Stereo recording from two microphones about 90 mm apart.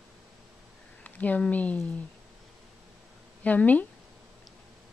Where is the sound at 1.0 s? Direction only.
15° left (ahead or behind).